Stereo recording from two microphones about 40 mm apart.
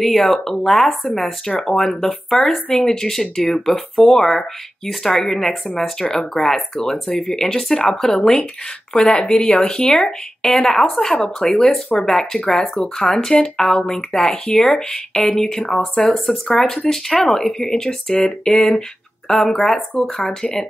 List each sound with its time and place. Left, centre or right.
0.0 s speech: centre
10.4 s a woman's voice: centre